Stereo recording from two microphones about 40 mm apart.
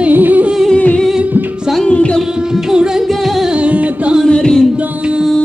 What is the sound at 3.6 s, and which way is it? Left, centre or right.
Music, right.